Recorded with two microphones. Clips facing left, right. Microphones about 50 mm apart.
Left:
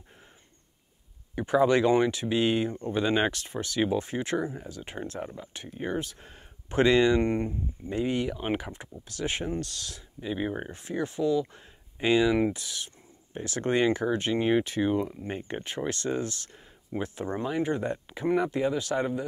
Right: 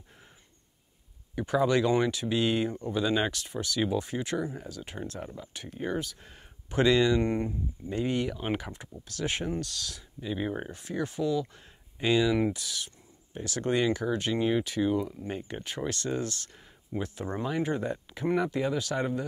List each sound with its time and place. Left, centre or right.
1.3 s speech: left
5.2 s speech: centre
5.9 s speech: left
7.9 s speech: centre
10.2 s speech: centre
10.7 s speech: left
17.4 s speech: centre